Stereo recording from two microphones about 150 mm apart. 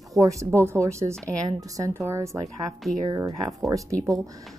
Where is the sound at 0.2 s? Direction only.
20° right (ahead or behind).